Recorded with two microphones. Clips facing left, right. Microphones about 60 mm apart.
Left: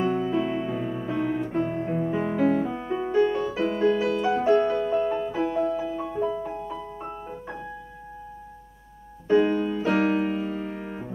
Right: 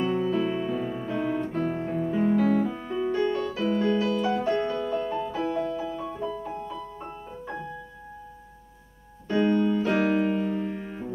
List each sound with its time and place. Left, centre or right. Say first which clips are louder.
0.0 s piano: left 1 dB; centre
1.6 s music: left 1 dB; centre
9.3 s piano: left 2 dB; centre